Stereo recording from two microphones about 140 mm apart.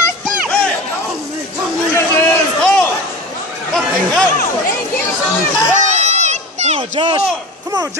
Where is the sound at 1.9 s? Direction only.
15° left (ahead or behind).